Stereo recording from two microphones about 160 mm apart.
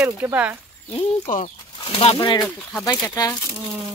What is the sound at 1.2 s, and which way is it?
Speech, 50° left (ahead or behind).